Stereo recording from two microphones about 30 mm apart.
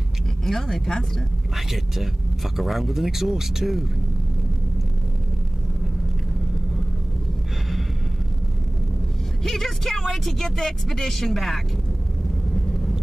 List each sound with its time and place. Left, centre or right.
0.6 s speech: centre
2.5 s speech: centre
9.4 s speech: centre
10.4 s speech: centre
11.2 s speech: centre